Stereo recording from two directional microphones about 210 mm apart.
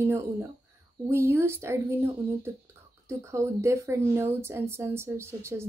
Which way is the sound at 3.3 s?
15° right (ahead or behind).